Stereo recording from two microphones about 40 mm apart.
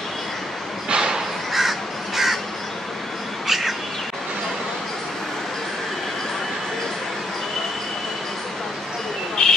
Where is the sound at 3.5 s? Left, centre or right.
Centre.